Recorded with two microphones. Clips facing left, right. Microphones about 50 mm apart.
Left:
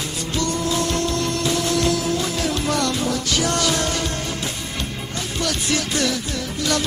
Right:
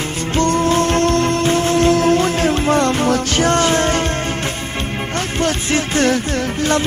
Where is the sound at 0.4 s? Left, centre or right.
Right.